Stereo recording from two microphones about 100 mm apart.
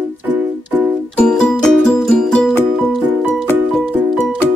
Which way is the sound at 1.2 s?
5° left (ahead or behind).